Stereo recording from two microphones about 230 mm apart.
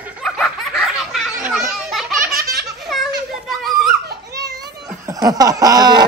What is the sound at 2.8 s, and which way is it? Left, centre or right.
Children playing, centre.